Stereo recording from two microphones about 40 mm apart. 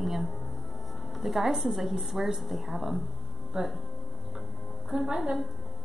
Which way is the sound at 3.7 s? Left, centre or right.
Centre.